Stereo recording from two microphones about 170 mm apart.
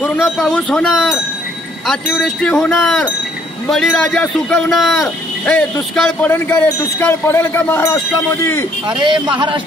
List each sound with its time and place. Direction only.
0.0 s speech: centre (ahead or behind)
8.8 s speech: 25° right (ahead or behind)